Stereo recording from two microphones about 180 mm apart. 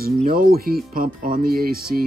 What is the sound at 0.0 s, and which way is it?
Speech, 55° right (ahead or behind).